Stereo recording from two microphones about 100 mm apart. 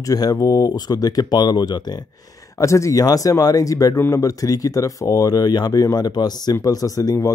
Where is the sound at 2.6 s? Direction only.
30° left (ahead or behind).